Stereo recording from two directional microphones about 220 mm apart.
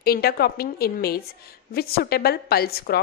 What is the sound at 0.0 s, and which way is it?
A woman's voice, 45° left (ahead or behind).